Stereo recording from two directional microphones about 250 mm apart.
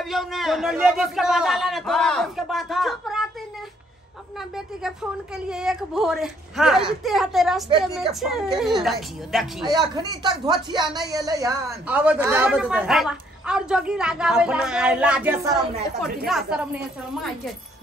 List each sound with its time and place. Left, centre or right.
0.0 s speech: centre
5.5 s speech: centre
9.7 s speech: centre